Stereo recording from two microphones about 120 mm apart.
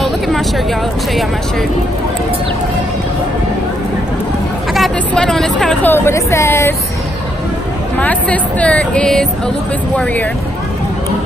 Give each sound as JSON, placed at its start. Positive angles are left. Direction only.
{"t": 4.7, "sound": "speech", "side_deg": 5}
{"t": 5.8, "sound": "speech", "side_deg": 20}
{"t": 8.0, "sound": "speech", "side_deg": 10}